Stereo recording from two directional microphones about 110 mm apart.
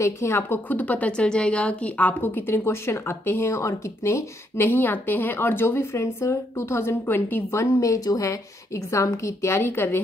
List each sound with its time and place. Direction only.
0.0 s a woman's voice: 25° left (ahead or behind)